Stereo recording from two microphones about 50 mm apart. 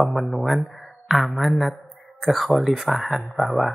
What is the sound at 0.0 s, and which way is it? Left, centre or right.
Speech, centre.